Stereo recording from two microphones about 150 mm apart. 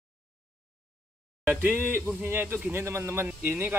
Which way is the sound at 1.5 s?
10° right (ahead or behind).